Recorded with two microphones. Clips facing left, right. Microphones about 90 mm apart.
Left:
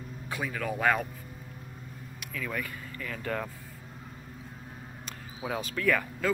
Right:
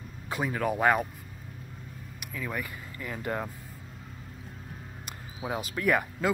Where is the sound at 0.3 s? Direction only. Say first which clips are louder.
Right 4 dB; 25° right (ahead or behind).